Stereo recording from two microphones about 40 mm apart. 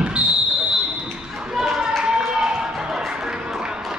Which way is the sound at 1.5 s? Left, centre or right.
Centre.